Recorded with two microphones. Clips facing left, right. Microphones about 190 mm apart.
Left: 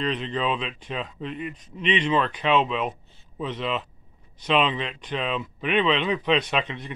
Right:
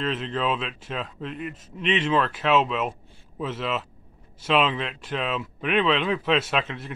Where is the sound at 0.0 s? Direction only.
Centre (ahead or behind).